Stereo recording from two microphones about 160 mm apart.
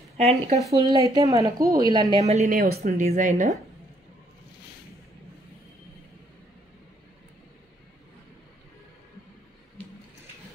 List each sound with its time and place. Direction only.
0.2 s speech: 40° right (ahead or behind)
1.0 s a woman's voice: 20° right (ahead or behind)
2.1 s speech: 40° right (ahead or behind)
2.4 s speech: 70° right (ahead or behind)
2.8 s speech: 50° right (ahead or behind)